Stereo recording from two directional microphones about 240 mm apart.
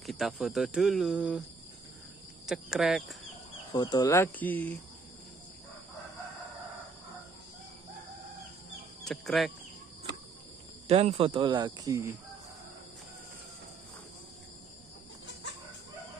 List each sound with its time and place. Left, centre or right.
0.0 s speech: centre
2.4 s speech: centre
3.7 s speech: centre
9.0 s speech: centre
10.9 s speech: right